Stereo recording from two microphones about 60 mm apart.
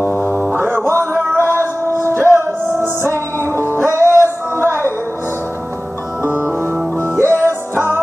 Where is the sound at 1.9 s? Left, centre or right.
Left.